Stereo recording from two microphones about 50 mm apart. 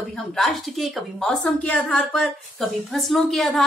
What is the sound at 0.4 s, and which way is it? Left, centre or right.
Speech, centre.